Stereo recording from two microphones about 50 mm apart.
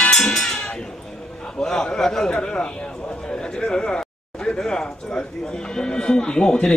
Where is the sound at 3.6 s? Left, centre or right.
Centre.